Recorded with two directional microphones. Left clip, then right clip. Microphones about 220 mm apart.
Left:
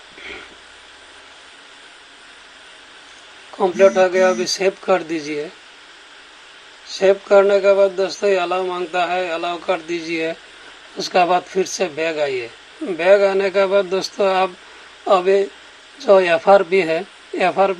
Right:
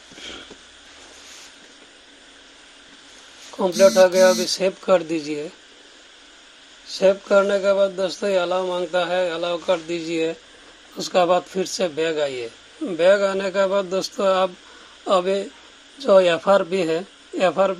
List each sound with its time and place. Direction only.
3.5 s speech: 30° right (ahead or behind)
6.9 s speech: 30° right (ahead or behind)